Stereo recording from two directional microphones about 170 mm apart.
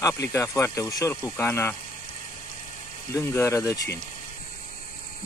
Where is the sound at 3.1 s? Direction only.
15° left (ahead or behind).